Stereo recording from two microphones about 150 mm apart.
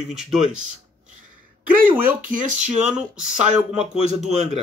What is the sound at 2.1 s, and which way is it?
Speech, 10° right (ahead or behind).